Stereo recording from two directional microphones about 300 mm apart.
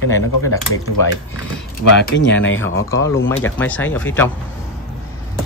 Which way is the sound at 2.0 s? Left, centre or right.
Left.